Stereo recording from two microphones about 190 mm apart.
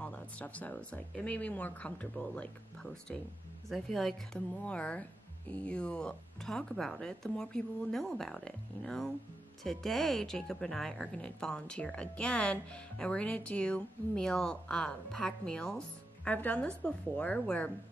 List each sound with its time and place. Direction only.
0.0 s speech: 5° left (ahead or behind)